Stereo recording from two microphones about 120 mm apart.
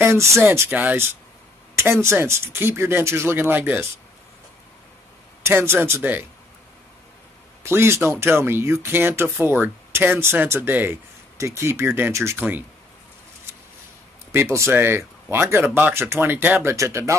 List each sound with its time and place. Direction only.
0.0 s speech: 25° right (ahead or behind)
5.4 s speech: 20° right (ahead or behind)
7.6 s speech: 20° right (ahead or behind)
14.3 s speech: 25° right (ahead or behind)